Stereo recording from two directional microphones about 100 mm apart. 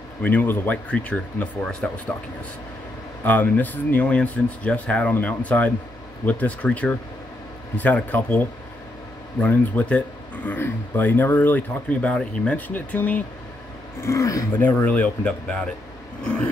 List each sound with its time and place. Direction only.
0.2 s speech: 20° left (ahead or behind)
3.3 s speech: 15° left (ahead or behind)
9.4 s speech: 15° left (ahead or behind)
14.0 s speech: 30° left (ahead or behind)
14.9 s speech: 15° left (ahead or behind)